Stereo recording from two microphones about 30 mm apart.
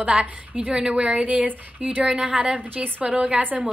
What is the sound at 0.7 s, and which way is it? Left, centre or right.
A woman's voice, right.